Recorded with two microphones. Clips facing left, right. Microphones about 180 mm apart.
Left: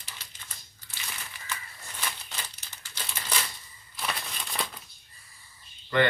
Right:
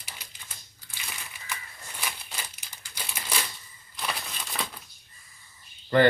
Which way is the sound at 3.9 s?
Centre (ahead or behind).